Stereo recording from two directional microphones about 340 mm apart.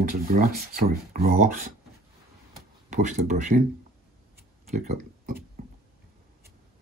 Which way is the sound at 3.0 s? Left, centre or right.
Right.